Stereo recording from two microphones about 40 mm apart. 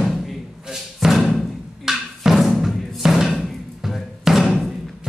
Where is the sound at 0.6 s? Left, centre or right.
Centre.